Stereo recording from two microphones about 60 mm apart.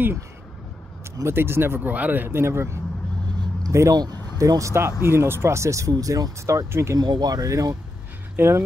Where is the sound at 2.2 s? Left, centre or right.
Right.